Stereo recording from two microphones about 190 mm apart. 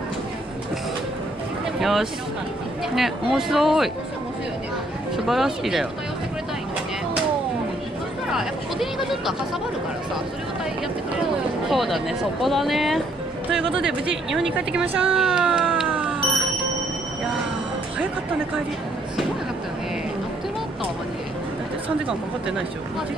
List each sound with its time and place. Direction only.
1.8 s speech: centre (ahead or behind)
5.1 s speech: centre (ahead or behind)
8.3 s speech: centre (ahead or behind)
11.7 s speech: centre (ahead or behind)
13.7 s speech: 70° right (ahead or behind)
14.3 s speech: 5° right (ahead or behind)
15.0 s a sound: 5° right (ahead or behind)
22.0 s speech: 5° right (ahead or behind)